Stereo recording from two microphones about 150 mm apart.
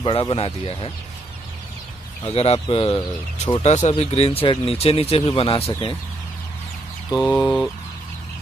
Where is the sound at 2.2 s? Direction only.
40° left (ahead or behind).